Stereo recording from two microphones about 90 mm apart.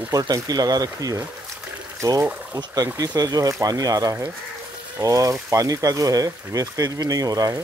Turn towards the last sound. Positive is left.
turn(degrees=-40)  # may be behind; listen again after turning